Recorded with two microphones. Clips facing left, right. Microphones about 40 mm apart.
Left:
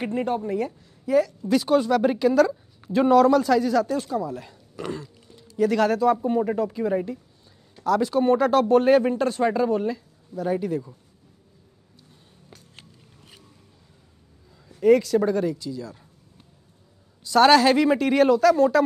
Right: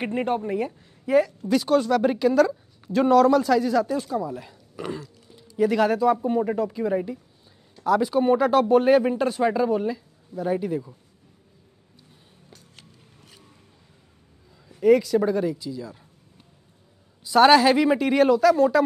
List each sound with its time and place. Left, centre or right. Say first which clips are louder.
0.0 s a woman's voice: even; right
1.5 s speech: left 1 dB; centre
7.8 s a man's voice: even; centre
12.4 s music: left 2 dB; centre
14.8 s a man's voice: even; centre
17.2 s a man's voice: right 1 dB; centre